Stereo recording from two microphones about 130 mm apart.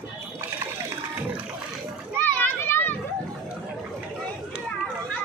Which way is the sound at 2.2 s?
15° left (ahead or behind).